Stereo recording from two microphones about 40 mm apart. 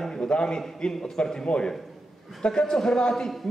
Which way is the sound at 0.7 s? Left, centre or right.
Centre.